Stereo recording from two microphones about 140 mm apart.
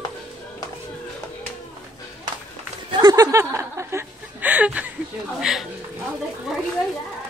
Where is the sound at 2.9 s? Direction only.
30° right (ahead or behind); by 4.9 s 10° right (ahead or behind).